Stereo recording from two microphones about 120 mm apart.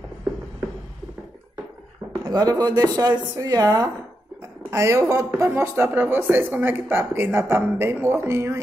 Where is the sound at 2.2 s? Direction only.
35° right (ahead or behind).